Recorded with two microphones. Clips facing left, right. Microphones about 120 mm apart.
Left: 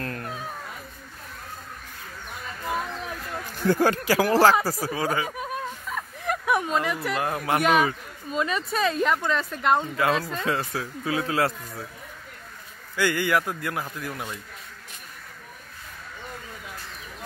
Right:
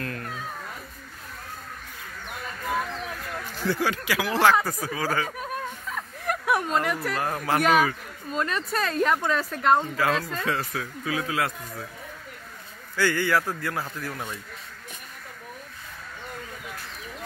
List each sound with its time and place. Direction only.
0.0 s a sound: 30° left (ahead or behind)
3.5 s speech: 50° left (ahead or behind); by 5.1 s 30° left (ahead or behind)
5.4 s a sound: 5° left (ahead or behind)
7.2 s a man's voice: 15° left (ahead or behind)
9.9 s speech: 20° left (ahead or behind)
12.9 s a man's voice: 15° left (ahead or behind)